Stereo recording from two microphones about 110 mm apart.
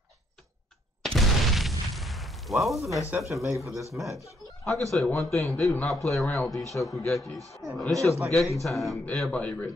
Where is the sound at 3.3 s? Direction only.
25° right (ahead or behind).